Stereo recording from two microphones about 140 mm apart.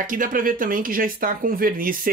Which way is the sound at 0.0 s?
75° right (ahead or behind).